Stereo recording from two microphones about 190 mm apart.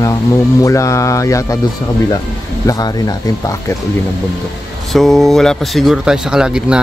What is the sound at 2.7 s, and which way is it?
Speech, 20° left (ahead or behind).